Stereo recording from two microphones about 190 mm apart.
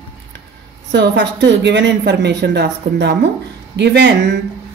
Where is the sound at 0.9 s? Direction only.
65° right (ahead or behind).